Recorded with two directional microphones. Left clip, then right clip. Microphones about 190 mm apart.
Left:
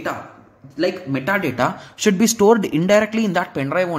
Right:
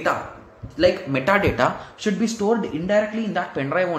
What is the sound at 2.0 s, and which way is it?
Speech, 45° left (ahead or behind).